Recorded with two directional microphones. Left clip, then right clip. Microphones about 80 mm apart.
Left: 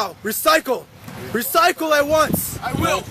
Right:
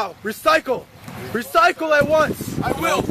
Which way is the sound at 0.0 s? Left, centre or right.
Left.